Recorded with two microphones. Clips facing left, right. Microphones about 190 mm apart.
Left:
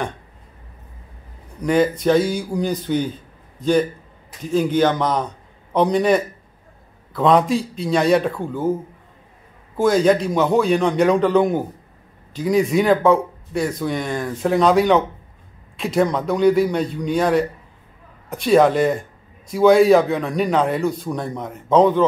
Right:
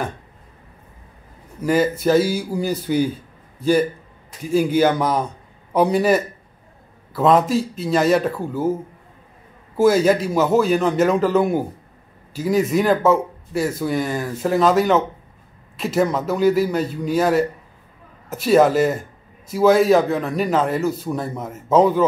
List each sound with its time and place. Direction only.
1.6 s a man's voice: 5° right (ahead or behind)
9.8 s speech: 5° right (ahead or behind)